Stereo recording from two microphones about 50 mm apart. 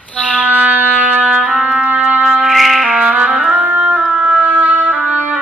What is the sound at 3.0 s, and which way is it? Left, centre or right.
Music, right.